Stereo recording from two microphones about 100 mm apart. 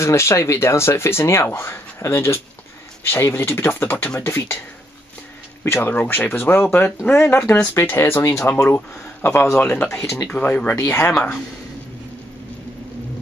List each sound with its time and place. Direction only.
0.0 s speech: 30° left (ahead or behind)
5.8 s speech: 20° left (ahead or behind)